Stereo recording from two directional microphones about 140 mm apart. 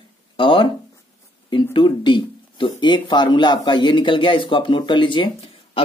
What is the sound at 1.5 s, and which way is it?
Speech, 35° left (ahead or behind).